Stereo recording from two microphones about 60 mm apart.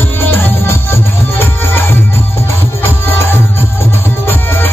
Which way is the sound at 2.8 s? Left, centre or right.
Left.